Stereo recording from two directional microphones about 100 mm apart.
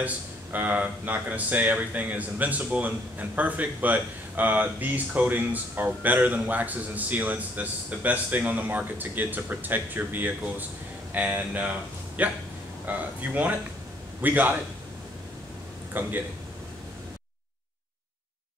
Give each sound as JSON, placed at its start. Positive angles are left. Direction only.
{"t": 0.0, "sound": "speech", "side_deg": -15}
{"t": 15.9, "sound": "speech", "side_deg": -20}